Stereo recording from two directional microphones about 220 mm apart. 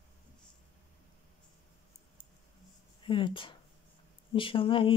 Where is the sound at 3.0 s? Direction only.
25° left (ahead or behind).